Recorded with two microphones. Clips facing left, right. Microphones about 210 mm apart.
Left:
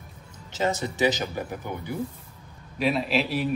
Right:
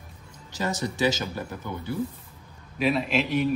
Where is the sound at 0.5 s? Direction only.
20° left (ahead or behind).